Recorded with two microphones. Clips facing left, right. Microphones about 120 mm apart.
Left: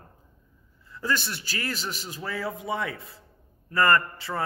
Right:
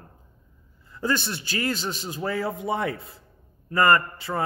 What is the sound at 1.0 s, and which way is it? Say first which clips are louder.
A man's voice: right 3 dB; 25° right (ahead or behind).